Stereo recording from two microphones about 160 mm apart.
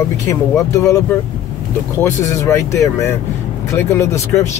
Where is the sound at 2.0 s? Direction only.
20° left (ahead or behind).